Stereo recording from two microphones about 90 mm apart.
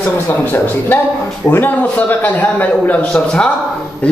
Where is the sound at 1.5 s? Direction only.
20° left (ahead or behind).